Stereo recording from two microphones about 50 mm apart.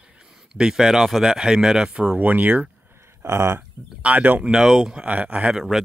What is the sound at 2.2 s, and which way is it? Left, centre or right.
Speech, right.